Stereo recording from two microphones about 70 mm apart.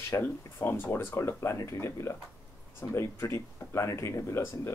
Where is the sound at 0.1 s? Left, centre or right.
Left.